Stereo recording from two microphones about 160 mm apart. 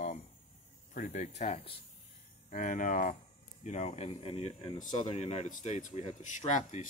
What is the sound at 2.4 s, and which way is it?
Speech, 55° left (ahead or behind).